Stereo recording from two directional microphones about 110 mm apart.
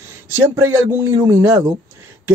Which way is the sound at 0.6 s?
25° right (ahead or behind).